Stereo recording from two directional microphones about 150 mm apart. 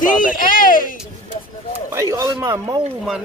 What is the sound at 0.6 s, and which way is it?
Speech, 70° left (ahead or behind).